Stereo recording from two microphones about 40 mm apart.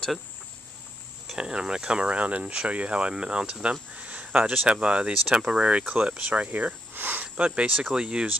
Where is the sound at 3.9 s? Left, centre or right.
Right.